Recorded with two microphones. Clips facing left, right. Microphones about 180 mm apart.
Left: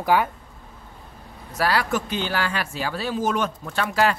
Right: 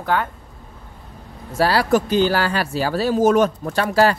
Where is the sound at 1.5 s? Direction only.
30° right (ahead or behind).